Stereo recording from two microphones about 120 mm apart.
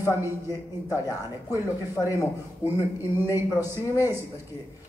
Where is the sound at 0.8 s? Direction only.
30° left (ahead or behind).